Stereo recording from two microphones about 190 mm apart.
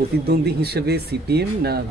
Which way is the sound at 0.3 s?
55° right (ahead or behind).